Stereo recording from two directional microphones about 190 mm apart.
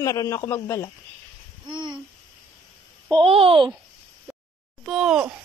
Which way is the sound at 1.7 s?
25° right (ahead or behind).